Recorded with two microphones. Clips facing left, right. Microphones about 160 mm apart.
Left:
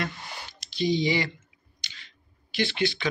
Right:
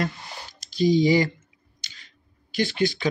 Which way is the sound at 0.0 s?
40° right (ahead or behind).